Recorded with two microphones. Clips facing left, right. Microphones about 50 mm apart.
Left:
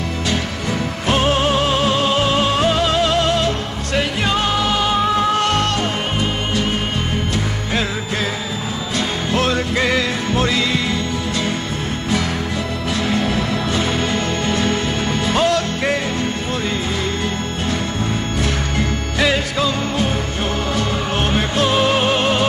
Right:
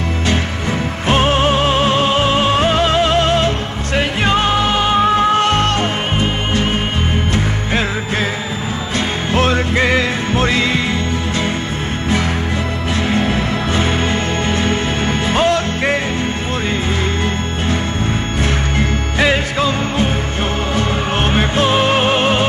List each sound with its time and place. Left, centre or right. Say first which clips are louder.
1.0 s music: right 3 dB; right
9.3 s music: right 3 dB; right
13.1 s music: right 2 dB; right
18.4 s music: right 4 dB; right